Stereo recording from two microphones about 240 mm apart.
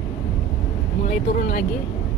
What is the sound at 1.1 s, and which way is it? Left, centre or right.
Speech, left.